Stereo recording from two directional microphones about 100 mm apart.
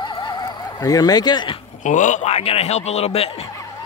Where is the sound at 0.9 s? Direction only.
40° left (ahead or behind).